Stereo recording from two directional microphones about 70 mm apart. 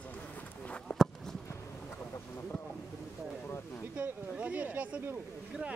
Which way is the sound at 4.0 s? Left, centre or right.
Centre.